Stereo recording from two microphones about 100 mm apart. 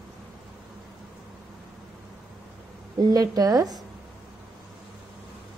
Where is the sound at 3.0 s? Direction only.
40° right (ahead or behind).